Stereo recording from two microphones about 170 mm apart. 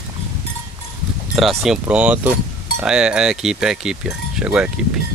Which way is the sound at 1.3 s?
Centre (ahead or behind).